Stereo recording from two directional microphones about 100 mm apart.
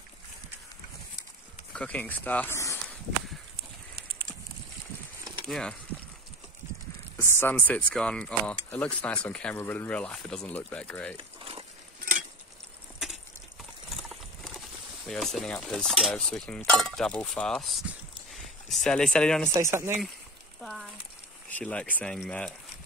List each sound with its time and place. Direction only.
1.7 s speech: 10° left (ahead or behind)
5.4 s speech: 5° left (ahead or behind)
7.2 s speech: 25° left (ahead or behind)
13.8 s clip-clop: centre (ahead or behind)
15.0 s cutlery: centre (ahead or behind)
18.7 s speech: 5° left (ahead or behind)
19.5 s speech: 30° right (ahead or behind)
20.6 s a sound: centre (ahead or behind)
21.5 s speech: 15° left (ahead or behind)